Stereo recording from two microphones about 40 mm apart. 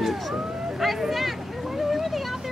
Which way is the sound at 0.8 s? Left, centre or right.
Centre.